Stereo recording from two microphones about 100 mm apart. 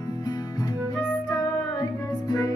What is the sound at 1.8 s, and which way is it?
Music, 40° left (ahead or behind).